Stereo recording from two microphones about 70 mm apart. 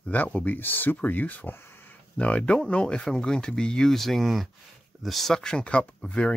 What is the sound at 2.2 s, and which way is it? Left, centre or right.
Speech, centre.